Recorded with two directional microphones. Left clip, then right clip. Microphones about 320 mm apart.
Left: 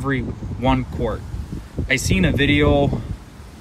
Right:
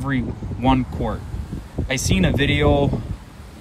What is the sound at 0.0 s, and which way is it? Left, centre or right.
Speech, centre.